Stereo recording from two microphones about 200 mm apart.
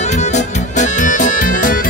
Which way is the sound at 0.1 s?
35° left (ahead or behind).